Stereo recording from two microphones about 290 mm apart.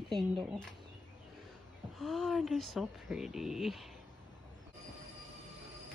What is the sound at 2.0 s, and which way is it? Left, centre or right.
Speech, centre.